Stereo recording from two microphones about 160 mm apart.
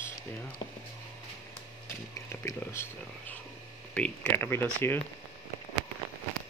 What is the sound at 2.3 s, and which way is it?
Speech, 15° left (ahead or behind).